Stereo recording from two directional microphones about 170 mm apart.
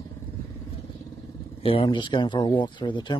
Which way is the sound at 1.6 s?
30° left (ahead or behind).